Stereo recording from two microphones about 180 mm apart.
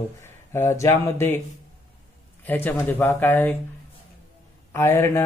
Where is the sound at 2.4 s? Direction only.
10° left (ahead or behind).